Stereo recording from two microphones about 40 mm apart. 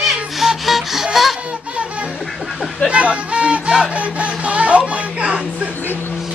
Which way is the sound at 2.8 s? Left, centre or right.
Right.